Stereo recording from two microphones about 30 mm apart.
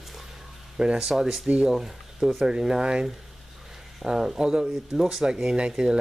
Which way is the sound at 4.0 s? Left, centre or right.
Centre.